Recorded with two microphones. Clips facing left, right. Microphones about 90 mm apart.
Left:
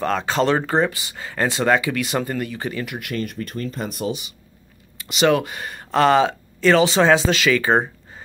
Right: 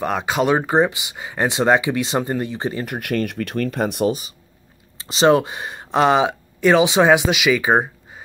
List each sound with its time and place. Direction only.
0.0 s speech: 15° right (ahead or behind)
2.8 s speech: 50° right (ahead or behind)
4.9 s speech: 30° right (ahead or behind); by 7.9 s 10° right (ahead or behind)